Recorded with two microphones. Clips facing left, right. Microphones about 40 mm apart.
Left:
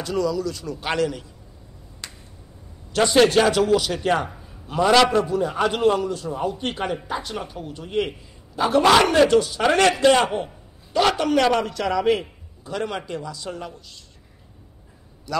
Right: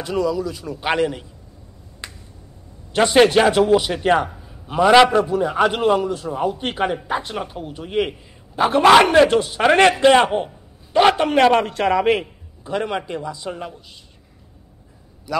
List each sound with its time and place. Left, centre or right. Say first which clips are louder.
0.0 s a man's voice: right 2 dB; centre
2.0 s finger snapping: right 3 dB; centre
2.9 s a man's voice: right 3 dB; right
8.5 s a man's voice: right 4 dB; right
12.6 s a man's voice: right 4 dB; right
15.3 s a man's voice: right 2 dB; centre